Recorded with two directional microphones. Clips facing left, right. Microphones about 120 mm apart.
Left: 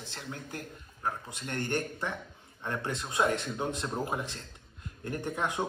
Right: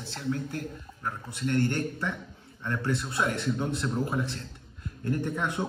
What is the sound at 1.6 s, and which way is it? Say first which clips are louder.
A man's voice: right 3 dB; 20° left (ahead or behind).